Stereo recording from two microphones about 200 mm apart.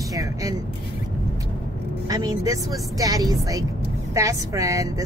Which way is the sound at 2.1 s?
20° right (ahead or behind).